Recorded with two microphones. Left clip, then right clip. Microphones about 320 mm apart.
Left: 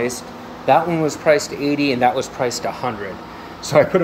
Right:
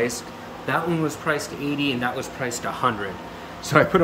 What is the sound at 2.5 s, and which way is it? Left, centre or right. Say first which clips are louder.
Speech: left 1 dB; centre.